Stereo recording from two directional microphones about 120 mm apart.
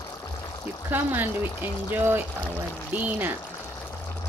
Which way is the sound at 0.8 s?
15° right (ahead or behind).